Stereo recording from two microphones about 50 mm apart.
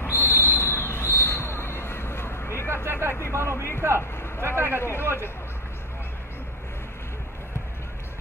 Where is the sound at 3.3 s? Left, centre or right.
Right.